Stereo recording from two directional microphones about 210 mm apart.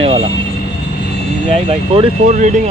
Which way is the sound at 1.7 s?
25° right (ahead or behind).